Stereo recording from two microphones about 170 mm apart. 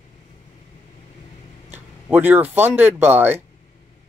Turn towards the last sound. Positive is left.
turn(degrees=-10)  # may be behind; listen again after turning